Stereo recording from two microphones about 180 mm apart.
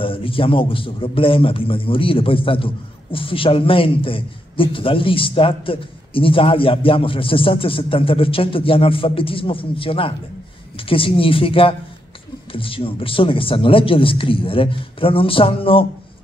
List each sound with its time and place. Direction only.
0.0 s a man's voice: 30° left (ahead or behind)